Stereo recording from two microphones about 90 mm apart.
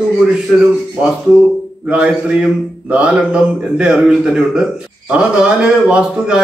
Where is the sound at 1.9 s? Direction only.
15° right (ahead or behind).